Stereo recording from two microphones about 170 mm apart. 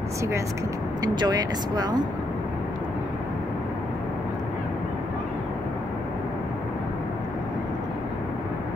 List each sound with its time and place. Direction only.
1.0 s speech: 25° right (ahead or behind)